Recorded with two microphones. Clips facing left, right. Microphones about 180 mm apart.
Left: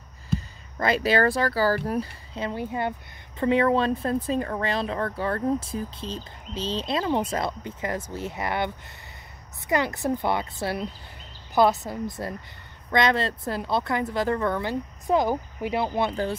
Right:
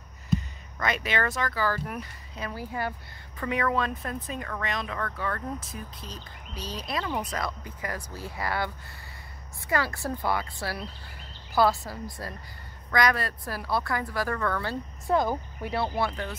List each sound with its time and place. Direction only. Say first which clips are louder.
0.3 s speech: right 1 dB; 30° left (ahead or behind)